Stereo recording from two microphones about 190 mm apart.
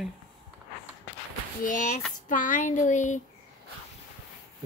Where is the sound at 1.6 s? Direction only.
45° left (ahead or behind).